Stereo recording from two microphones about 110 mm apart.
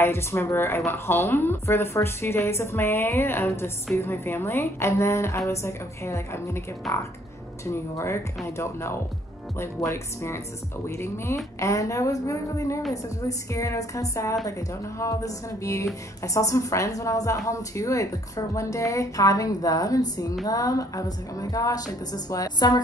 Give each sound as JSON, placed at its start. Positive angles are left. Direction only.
{"t": 0.0, "sound": "a woman's voice", "side_deg": 20}
{"t": 6.8, "sound": "speech", "side_deg": 0}
{"t": 7.6, "sound": "a woman's voice", "side_deg": 25}